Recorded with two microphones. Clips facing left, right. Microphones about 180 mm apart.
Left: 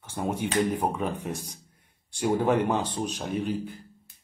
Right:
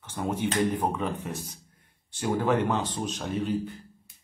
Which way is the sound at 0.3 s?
10° left (ahead or behind).